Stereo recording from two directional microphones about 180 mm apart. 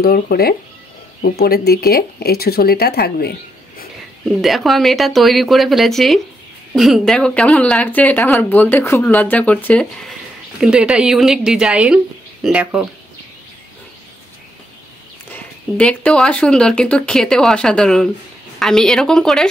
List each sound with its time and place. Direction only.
0.0 s speech: 55° left (ahead or behind)
4.4 s speech: centre (ahead or behind)
10.6 s speech: 5° right (ahead or behind)
15.3 s speech: 5° left (ahead or behind)